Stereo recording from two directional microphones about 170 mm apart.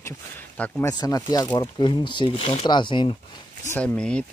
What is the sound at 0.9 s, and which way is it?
Speech, 20° left (ahead or behind).